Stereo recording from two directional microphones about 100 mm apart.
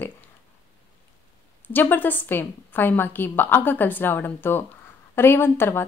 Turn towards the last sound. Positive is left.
turn(degrees=25)  # may be behind; listen again after turning